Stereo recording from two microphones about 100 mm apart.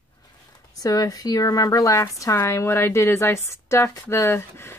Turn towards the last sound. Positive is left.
turn(degrees=25)  # may be behind; listen again after turning